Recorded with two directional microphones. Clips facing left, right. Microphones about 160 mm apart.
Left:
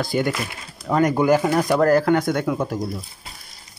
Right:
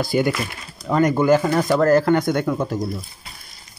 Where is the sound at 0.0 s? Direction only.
5° right (ahead or behind).